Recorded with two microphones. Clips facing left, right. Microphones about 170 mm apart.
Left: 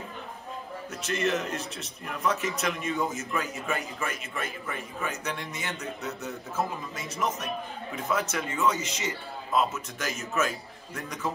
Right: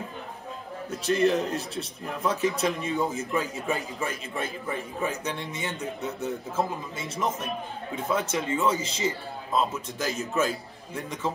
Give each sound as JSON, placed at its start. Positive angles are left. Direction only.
{"t": 1.0, "sound": "a man's voice", "side_deg": -35}